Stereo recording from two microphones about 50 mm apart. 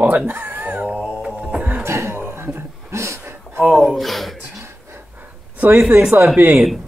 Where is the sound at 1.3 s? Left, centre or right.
Right.